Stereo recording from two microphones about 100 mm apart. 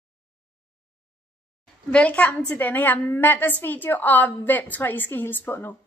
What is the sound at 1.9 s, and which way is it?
A woman's voice, 10° left (ahead or behind).